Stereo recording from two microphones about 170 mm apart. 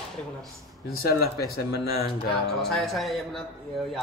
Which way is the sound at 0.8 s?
65° left (ahead or behind).